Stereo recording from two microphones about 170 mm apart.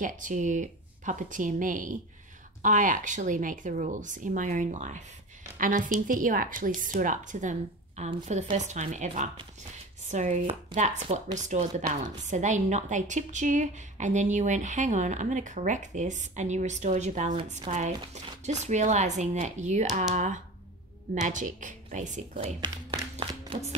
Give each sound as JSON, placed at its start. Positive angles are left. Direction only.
{"t": 0.0, "sound": "a woman's voice", "side_deg": -45}